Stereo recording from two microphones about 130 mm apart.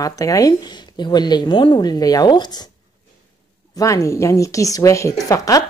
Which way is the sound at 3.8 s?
25° left (ahead or behind).